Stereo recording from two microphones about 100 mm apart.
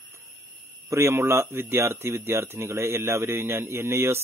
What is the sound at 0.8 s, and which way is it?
Speech, 30° right (ahead or behind).